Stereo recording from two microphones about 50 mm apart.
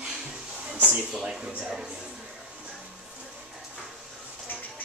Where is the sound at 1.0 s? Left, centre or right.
Centre.